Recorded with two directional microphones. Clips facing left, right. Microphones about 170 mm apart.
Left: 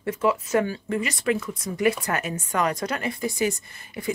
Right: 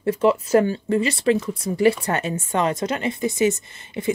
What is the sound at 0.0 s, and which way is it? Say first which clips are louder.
Speech: right 5 dB; 30° right (ahead or behind).